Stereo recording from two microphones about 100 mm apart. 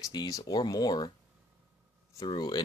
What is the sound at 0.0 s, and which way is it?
Speech, 40° left (ahead or behind).